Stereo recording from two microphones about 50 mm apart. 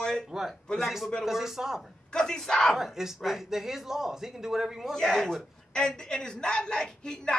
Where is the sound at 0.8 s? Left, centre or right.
Centre.